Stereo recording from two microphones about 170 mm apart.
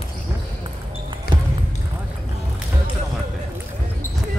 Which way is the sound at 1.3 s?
65° left (ahead or behind).